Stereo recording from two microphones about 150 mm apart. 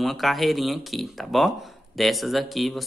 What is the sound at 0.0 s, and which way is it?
Speech, centre (ahead or behind).